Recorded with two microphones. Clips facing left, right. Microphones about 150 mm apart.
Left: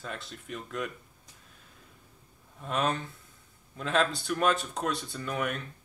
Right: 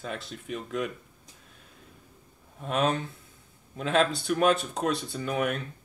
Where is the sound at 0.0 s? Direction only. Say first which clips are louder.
Right 4 dB; 65° right (ahead or behind).